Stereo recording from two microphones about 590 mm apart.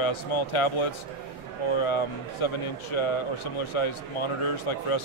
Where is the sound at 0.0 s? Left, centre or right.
Left.